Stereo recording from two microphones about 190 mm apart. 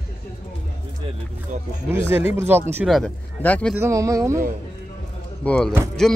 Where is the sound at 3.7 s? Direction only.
15° right (ahead or behind).